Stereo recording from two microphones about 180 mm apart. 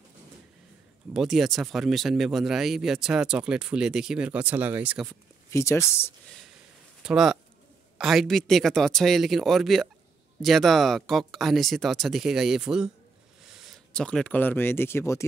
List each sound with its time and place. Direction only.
1.1 s speech: centre (ahead or behind)
5.5 s speech: 15° left (ahead or behind)
7.0 s speech: 5° right (ahead or behind); by 15.2 s 15° left (ahead or behind)